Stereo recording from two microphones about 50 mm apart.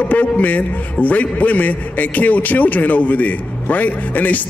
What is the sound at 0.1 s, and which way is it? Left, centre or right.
A man's voice, left.